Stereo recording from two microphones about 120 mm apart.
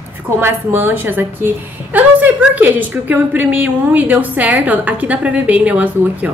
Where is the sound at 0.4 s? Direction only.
20° right (ahead or behind).